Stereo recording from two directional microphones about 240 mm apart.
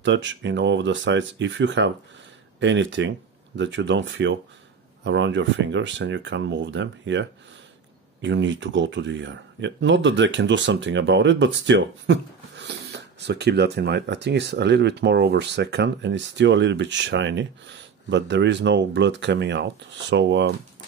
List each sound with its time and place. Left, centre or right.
0.0 s speech: right